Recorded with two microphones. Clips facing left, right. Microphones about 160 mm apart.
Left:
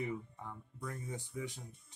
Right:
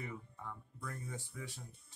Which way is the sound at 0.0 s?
20° left (ahead or behind).